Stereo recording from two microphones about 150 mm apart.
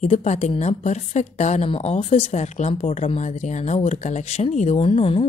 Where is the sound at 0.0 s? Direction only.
50° left (ahead or behind).